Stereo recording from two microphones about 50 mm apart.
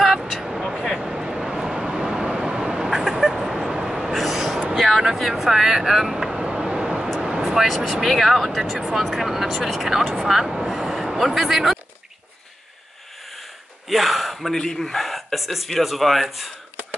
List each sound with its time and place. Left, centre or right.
0.0 s vehicle: centre
6.5 s a sound: centre
7.2 s vehicle: centre
7.6 s speech: centre
13.8 s a sound: centre
14.6 s speech: centre